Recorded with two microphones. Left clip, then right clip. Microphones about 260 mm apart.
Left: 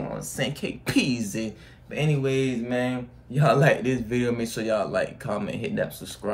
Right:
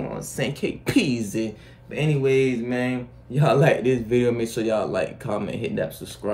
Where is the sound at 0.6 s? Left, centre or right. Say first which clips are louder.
Right 5 dB; centre.